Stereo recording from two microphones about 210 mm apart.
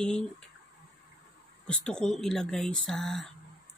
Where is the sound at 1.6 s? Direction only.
5° left (ahead or behind).